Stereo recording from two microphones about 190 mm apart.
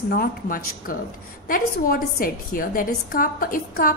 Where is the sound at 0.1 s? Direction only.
50° left (ahead or behind).